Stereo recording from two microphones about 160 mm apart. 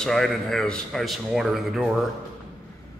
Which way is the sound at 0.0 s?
5° left (ahead or behind).